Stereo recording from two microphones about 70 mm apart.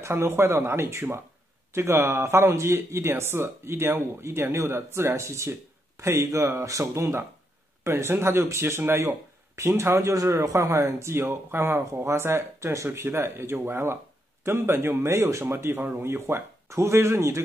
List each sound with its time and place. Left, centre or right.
0.0 s speech: right
9.9 s speech: right